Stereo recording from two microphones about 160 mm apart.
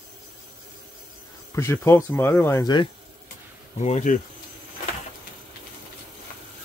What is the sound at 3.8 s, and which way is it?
Speech, 50° left (ahead or behind).